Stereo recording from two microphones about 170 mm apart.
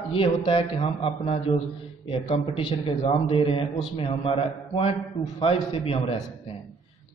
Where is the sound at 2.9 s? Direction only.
30° left (ahead or behind).